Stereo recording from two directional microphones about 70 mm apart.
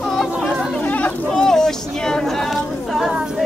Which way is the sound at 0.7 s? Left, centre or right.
Left.